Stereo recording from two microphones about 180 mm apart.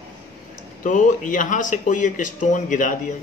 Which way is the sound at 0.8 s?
45° left (ahead or behind).